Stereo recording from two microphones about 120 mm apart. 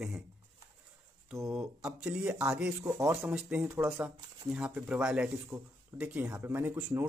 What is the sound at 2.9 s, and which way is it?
Speech, 20° right (ahead or behind).